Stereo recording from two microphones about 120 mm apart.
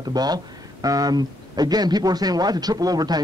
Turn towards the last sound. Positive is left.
turn(degrees=-35)  # may be behind; listen again after turning